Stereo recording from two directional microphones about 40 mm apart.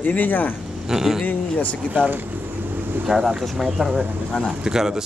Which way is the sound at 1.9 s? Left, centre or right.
Right.